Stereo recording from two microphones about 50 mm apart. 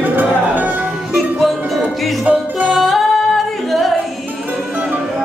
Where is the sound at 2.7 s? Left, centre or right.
Centre.